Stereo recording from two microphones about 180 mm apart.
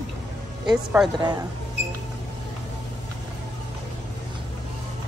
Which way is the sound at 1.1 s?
25° right (ahead or behind).